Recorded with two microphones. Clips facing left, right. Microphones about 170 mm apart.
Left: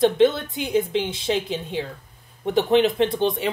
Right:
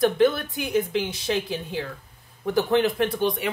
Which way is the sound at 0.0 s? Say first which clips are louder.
Left 2 dB; 25° left (ahead or behind).